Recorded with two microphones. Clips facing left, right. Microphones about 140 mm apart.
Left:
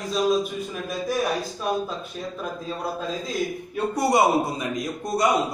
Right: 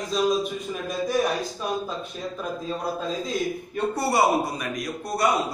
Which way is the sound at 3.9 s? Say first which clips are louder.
Left 2 dB; 20° left (ahead or behind).